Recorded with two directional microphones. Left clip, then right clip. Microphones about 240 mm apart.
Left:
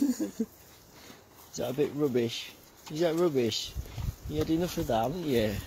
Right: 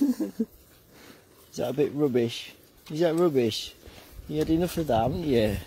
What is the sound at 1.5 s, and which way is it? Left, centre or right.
Speech, right.